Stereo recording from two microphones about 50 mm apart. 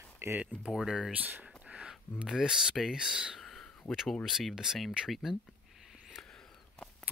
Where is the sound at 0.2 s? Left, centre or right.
Right.